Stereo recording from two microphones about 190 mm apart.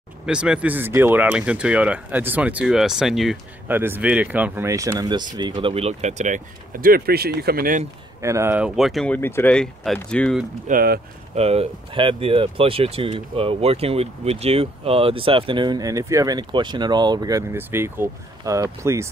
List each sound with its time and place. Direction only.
0.3 s speech: 5° right (ahead or behind); by 7.8 s 50° right (ahead or behind)
8.2 s speech: 15° right (ahead or behind); by 10.4 s 5° left (ahead or behind)
10.7 s speech: 50° right (ahead or behind)
11.3 s speech: 35° right (ahead or behind); by 19.0 s 15° right (ahead or behind)